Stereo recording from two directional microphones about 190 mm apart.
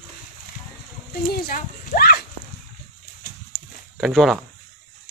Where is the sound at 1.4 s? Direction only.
50° left (ahead or behind).